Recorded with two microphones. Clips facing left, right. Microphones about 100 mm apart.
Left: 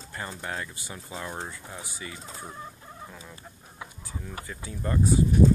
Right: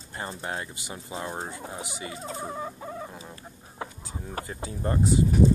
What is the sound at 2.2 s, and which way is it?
Fowl, 90° right.